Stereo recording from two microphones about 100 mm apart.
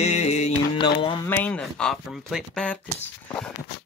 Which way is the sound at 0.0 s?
90° left.